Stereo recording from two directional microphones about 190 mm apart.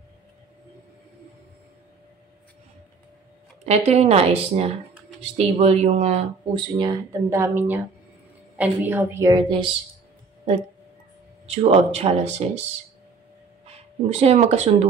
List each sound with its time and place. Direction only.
3.6 s a woman's voice: 35° right (ahead or behind)
6.5 s speech: 25° right (ahead or behind)
11.4 s a woman's voice: 35° right (ahead or behind)
13.7 s speech: 35° right (ahead or behind)